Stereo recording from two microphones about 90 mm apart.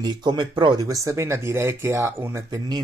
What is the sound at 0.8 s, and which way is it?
Speech, 40° right (ahead or behind).